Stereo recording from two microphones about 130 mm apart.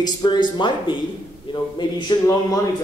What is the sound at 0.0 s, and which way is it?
A man's voice, 35° left (ahead or behind).